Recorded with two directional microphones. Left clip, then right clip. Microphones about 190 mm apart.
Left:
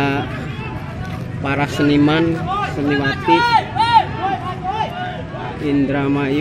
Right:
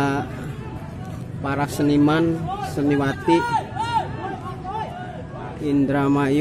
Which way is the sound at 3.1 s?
Centre (ahead or behind).